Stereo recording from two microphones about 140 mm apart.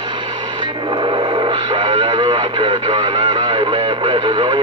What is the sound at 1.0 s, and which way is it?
Radio, 35° right (ahead or behind).